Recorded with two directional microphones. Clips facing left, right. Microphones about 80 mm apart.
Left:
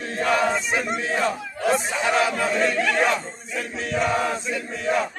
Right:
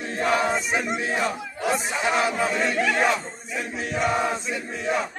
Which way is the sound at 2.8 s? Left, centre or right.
Centre.